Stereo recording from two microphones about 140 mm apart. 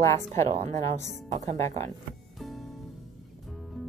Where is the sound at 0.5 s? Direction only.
55° right (ahead or behind).